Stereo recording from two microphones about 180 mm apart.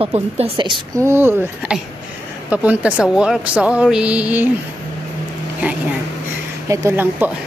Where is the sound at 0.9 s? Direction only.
15° right (ahead or behind).